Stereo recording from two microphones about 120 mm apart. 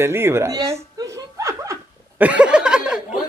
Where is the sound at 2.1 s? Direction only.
10° right (ahead or behind).